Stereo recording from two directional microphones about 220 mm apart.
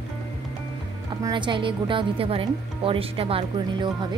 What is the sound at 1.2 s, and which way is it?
Speech, 20° right (ahead or behind).